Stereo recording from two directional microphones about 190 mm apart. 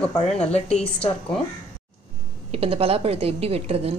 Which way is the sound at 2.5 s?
30° right (ahead or behind).